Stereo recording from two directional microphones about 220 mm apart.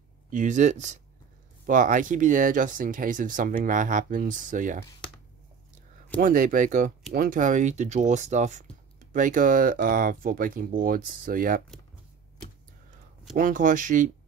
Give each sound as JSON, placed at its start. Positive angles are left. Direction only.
{"t": 0.3, "sound": "speech", "side_deg": -35}
{"t": 6.2, "sound": "speech", "side_deg": -35}
{"t": 13.4, "sound": "speech", "side_deg": -35}